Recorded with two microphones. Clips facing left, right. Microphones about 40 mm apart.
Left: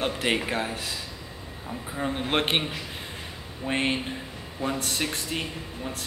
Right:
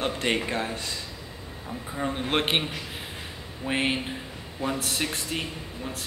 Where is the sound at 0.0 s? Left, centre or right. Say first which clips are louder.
Even; centre.